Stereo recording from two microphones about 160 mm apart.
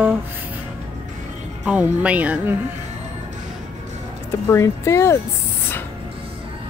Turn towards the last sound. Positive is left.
turn(degrees=15)  # may be behind; listen again after turning